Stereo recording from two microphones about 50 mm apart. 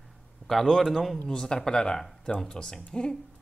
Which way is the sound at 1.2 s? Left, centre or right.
Centre.